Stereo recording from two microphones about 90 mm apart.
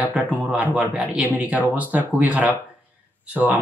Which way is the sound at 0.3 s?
20° right (ahead or behind).